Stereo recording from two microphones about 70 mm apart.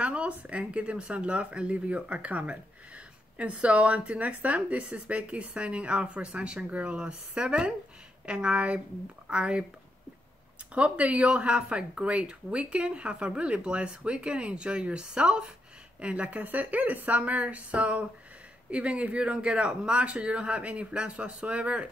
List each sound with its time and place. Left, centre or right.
0.0 s speech: centre
10.7 s speech: centre